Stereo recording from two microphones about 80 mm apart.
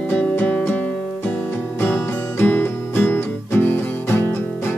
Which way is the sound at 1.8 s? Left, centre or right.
Left.